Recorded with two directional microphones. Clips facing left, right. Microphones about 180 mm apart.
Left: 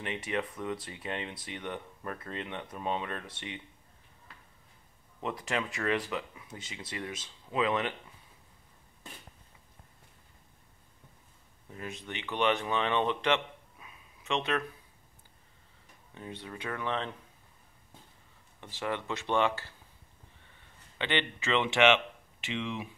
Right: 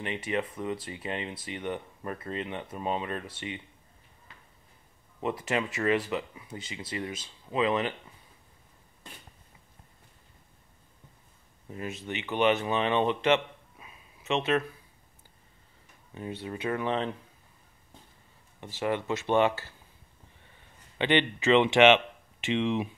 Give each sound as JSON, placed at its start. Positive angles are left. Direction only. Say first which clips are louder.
{"t": 0.0, "sound": "speech", "louder": "right 3 dB", "side_deg": 0}
{"t": 5.2, "sound": "speech", "louder": "right 4 dB", "side_deg": -5}
{"t": 11.7, "sound": "speech", "louder": "right 5 dB", "side_deg": -5}
{"t": 16.2, "sound": "speech", "louder": "right 6 dB", "side_deg": -5}
{"t": 18.6, "sound": "speech", "louder": "right 5 dB", "side_deg": -5}
{"t": 21.0, "sound": "speech", "louder": "right 7 dB", "side_deg": -15}